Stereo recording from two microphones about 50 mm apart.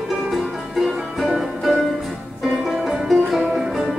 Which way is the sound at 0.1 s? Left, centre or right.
Centre.